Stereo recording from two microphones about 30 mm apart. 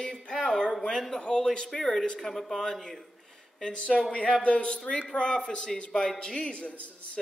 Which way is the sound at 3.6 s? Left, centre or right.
Left.